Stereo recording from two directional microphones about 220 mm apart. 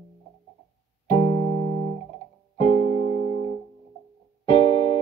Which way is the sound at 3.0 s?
40° right (ahead or behind).